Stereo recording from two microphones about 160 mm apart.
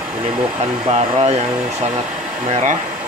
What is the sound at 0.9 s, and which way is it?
Speech, 40° right (ahead or behind).